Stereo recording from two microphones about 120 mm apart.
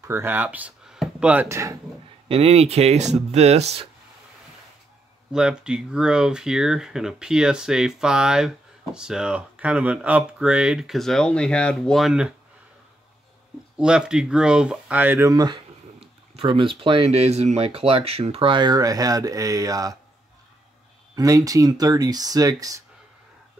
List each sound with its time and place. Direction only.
0.0 s speech: 20° right (ahead or behind)
1.5 s speech: 25° right (ahead or behind)
2.2 s speech: 50° right (ahead or behind)
5.3 s speech: 5° right (ahead or behind)
13.7 s speech: 5° right (ahead or behind)
15.3 s speech: 35° right (ahead or behind)
16.0 s speech: 50° right (ahead or behind)
17.1 s speech: 60° right (ahead or behind); by 20.0 s 30° right (ahead or behind)
21.1 s speech: 30° right (ahead or behind)